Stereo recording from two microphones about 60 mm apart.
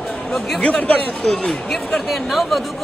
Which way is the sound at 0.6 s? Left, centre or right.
Left.